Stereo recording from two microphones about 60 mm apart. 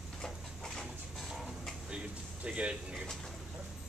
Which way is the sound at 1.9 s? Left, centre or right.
Centre.